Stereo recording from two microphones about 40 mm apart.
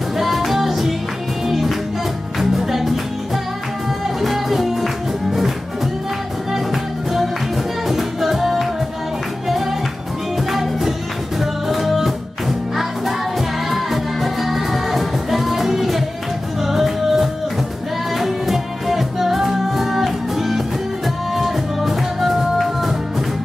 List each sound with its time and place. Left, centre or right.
0.2 s music: centre
4.2 s music: centre
6.5 s music: centre